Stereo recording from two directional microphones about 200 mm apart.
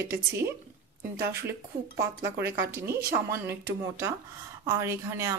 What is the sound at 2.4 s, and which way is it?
A woman's voice, 15° right (ahead or behind).